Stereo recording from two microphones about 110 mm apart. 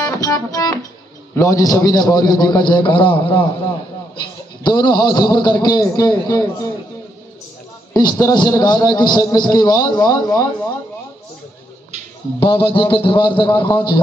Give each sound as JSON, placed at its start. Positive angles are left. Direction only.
{"t": 0.0, "sound": "music", "side_deg": 30}
{"t": 1.3, "sound": "a man's voice", "side_deg": 30}
{"t": 4.6, "sound": "a man's voice", "side_deg": 40}
{"t": 7.9, "sound": "a man's voice", "side_deg": 40}
{"t": 12.4, "sound": "a man's voice", "side_deg": 55}